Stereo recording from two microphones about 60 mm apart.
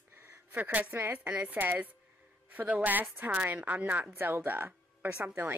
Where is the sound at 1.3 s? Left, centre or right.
Right.